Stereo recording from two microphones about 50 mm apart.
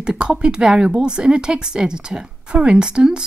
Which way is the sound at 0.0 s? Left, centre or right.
Centre.